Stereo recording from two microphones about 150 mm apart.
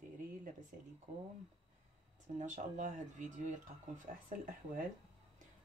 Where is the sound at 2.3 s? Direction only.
55° right (ahead or behind).